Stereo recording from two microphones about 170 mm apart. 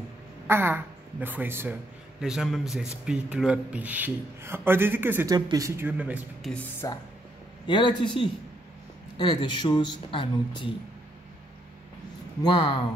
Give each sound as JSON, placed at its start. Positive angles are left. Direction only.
{"t": 0.5, "sound": "a woman's voice", "side_deg": -15}
{"t": 5.3, "sound": "speech", "side_deg": -25}
{"t": 5.8, "sound": "a man's voice", "side_deg": -10}
{"t": 6.4, "sound": "speech", "side_deg": 0}
{"t": 6.8, "sound": "speech", "side_deg": 20}
{"t": 12.4, "sound": "speech", "side_deg": 25}